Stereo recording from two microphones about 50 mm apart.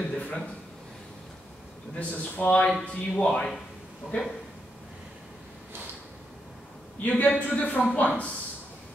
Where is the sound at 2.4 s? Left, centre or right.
Left.